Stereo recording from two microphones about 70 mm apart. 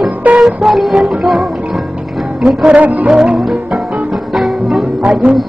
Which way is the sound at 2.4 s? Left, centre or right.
Centre.